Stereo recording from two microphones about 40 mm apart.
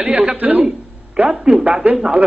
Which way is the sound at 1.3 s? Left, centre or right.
Centre.